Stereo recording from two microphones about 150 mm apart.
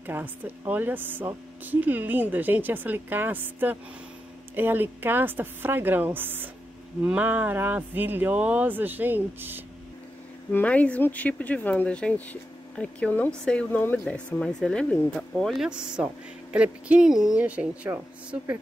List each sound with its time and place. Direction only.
0.0 s speech: 15° right (ahead or behind)
10.5 s speech: 10° left (ahead or behind); by 18.6 s 15° right (ahead or behind)